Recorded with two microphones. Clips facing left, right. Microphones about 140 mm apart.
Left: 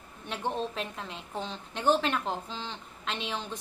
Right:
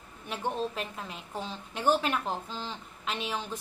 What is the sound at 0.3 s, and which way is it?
A woman's voice, 5° right (ahead or behind).